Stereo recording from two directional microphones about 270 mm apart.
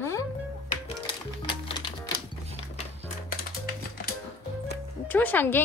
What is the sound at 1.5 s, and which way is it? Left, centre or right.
Music, centre.